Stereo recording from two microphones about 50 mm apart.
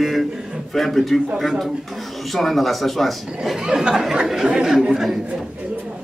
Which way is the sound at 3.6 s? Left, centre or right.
Centre.